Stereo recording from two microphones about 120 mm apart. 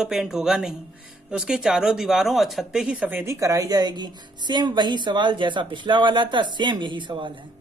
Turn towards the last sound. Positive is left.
turn(degrees=-45)  # may be behind; listen again after turning